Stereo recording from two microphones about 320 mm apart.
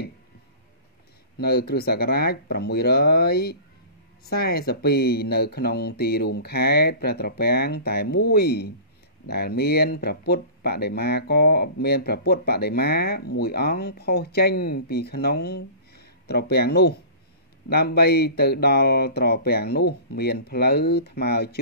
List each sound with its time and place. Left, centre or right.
1.4 s speech: left